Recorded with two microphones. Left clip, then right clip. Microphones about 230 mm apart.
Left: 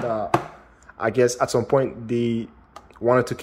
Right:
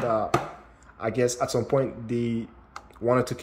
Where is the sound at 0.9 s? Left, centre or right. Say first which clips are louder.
Left 6 dB; centre.